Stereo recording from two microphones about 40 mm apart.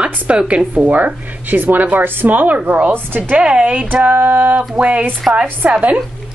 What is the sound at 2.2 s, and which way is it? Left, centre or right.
A woman's voice, right.